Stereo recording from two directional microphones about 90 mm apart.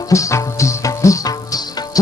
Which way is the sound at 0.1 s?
35° left (ahead or behind).